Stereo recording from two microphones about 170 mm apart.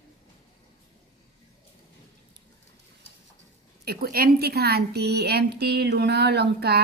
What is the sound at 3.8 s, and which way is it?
Speech, 65° right (ahead or behind).